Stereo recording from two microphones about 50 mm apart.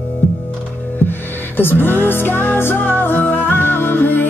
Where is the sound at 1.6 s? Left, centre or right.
Left.